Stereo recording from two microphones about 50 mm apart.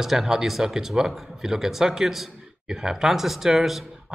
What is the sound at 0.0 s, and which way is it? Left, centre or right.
A man's voice, centre.